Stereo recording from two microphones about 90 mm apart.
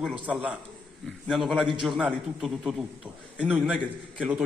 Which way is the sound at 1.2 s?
Centre (ahead or behind).